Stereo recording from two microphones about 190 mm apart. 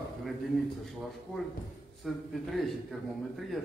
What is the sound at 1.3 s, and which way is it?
A man's voice, 5° left (ahead or behind).